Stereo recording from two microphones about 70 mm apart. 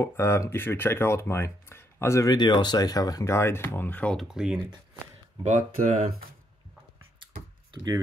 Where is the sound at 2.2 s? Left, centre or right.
Left.